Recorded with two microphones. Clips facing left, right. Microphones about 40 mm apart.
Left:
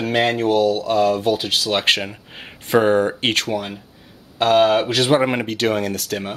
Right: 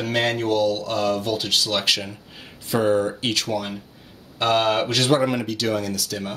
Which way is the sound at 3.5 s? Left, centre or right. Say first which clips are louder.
Left 2 dB; left.